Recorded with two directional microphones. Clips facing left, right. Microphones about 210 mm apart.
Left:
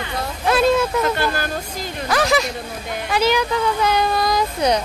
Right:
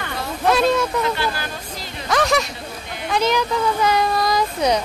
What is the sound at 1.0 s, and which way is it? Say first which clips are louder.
Speech: left 2 dB; 50° left (ahead or behind).